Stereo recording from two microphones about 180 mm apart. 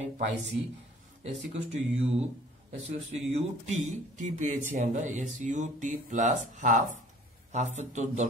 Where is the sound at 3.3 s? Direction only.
40° right (ahead or behind).